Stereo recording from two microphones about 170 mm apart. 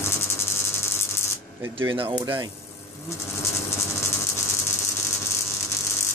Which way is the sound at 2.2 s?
15° right (ahead or behind).